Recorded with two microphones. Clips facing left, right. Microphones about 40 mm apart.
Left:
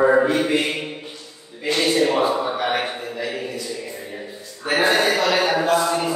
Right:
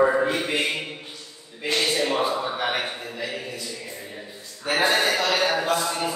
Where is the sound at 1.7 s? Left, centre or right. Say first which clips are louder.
Left 5 dB; centre.